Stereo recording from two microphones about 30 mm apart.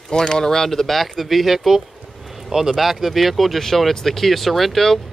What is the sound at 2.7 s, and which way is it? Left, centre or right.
Speech, centre.